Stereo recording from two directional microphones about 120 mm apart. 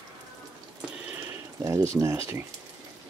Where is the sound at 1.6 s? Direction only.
25° right (ahead or behind).